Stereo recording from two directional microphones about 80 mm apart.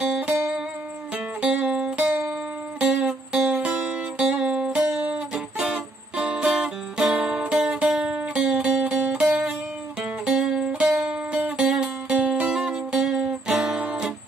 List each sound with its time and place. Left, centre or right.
0.1 s music: centre
4.8 s music: right
5.3 s music: centre